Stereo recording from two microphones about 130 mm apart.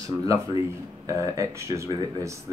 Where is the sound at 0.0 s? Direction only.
25° right (ahead or behind).